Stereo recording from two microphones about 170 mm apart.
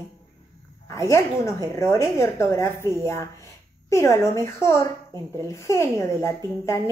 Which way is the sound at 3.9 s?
15° left (ahead or behind).